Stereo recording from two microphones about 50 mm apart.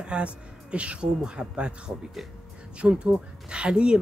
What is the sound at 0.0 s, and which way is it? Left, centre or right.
Speech, right.